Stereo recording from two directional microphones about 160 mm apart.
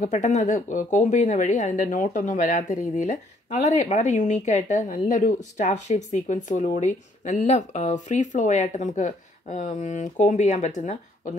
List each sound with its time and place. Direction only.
0.0 s speech: 50° left (ahead or behind)